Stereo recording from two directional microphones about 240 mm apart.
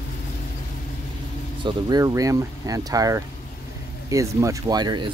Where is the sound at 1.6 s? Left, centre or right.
Centre.